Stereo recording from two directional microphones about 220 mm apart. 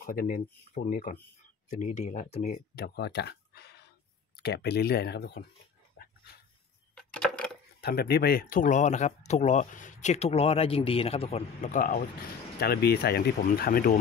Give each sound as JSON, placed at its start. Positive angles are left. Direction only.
{"t": 0.0, "sound": "speech", "side_deg": 40}
{"t": 2.7, "sound": "speech", "side_deg": 45}
{"t": 7.0, "sound": "a sound", "side_deg": 5}
{"t": 7.8, "sound": "speech", "side_deg": 45}